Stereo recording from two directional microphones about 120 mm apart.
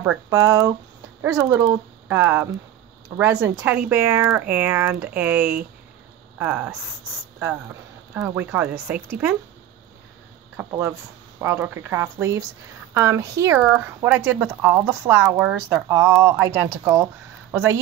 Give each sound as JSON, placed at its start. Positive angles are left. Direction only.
{"t": 0.3, "sound": "speech", "side_deg": -25}
{"t": 8.1, "sound": "speech", "side_deg": -15}
{"t": 10.5, "sound": "speech", "side_deg": -20}
{"t": 14.1, "sound": "speech", "side_deg": -15}